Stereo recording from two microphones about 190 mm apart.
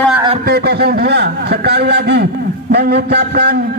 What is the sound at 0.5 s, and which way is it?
A man's voice, 55° right (ahead or behind).